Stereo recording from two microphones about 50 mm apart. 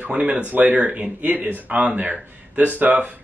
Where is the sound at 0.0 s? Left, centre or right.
Right.